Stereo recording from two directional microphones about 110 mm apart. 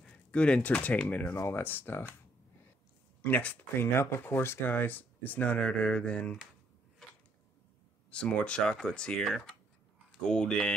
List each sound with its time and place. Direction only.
0.0 s speech: 10° left (ahead or behind)
3.2 s speech: 15° left (ahead or behind)
8.1 s speech: 10° left (ahead or behind)